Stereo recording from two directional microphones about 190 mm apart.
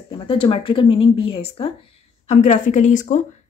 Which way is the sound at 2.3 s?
40° left (ahead or behind).